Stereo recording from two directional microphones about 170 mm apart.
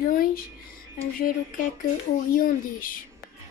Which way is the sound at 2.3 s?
55° left (ahead or behind).